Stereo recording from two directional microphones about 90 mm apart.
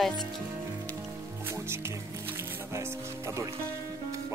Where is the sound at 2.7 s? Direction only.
30° right (ahead or behind).